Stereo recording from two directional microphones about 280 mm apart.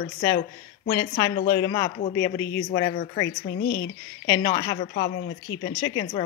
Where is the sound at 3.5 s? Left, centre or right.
Left.